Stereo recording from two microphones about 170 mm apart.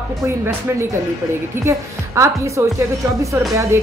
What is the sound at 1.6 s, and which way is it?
A woman's voice, 15° right (ahead or behind).